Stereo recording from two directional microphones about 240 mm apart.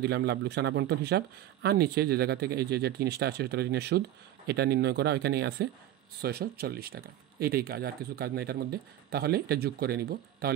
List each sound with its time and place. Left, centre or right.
0.0 s speech: right